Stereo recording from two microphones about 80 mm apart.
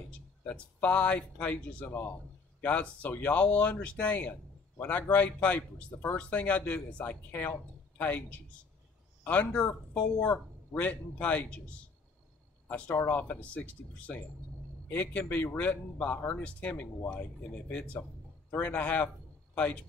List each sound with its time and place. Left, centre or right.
0.5 s a man's voice: centre
12.6 s a man's voice: centre